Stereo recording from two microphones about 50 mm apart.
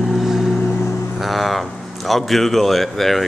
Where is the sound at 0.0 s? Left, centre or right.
Centre.